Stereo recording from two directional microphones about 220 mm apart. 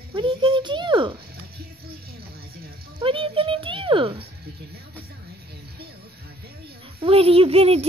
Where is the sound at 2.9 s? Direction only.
25° right (ahead or behind).